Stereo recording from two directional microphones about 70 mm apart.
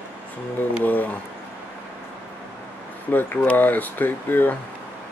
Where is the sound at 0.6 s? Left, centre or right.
Left.